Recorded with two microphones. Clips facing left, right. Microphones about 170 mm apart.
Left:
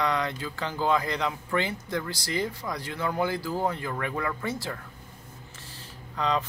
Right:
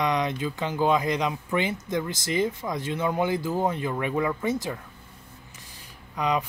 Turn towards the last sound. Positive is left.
turn(degrees=-15)  # may be behind; listen again after turning